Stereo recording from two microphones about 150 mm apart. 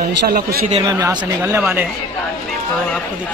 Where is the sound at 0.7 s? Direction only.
35° right (ahead or behind).